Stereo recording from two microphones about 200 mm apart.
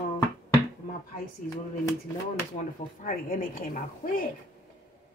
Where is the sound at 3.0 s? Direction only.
45° left (ahead or behind).